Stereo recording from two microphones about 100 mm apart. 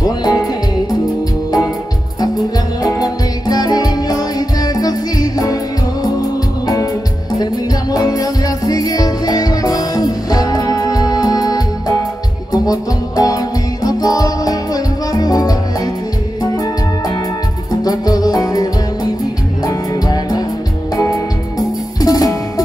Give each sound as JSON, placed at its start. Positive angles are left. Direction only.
{"t": 0.0, "sound": "music", "side_deg": 40}
{"t": 2.1, "sound": "music", "side_deg": 40}
{"t": 7.9, "sound": "music", "side_deg": 35}
{"t": 12.6, "sound": "music", "side_deg": 35}
{"t": 17.8, "sound": "music", "side_deg": 40}